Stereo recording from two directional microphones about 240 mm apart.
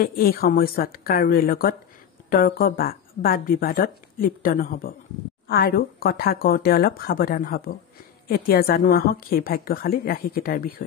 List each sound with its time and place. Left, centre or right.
0.0 s a woman's voice: left